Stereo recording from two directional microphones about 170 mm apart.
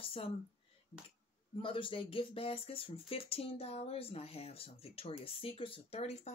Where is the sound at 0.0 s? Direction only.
35° left (ahead or behind).